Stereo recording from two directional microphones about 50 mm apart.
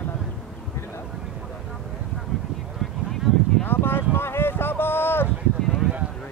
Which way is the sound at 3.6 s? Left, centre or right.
Left.